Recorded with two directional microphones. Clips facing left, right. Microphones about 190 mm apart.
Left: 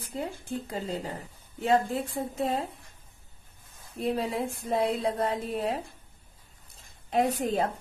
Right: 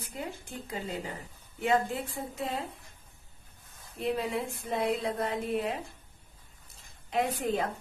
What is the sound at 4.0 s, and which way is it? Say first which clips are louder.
Speech: left 2 dB; 35° left (ahead or behind).